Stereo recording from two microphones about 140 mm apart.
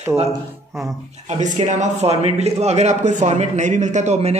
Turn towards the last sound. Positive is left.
turn(degrees=-50)  # may be behind; listen again after turning